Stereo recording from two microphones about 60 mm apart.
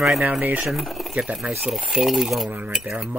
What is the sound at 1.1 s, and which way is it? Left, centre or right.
Speech, centre.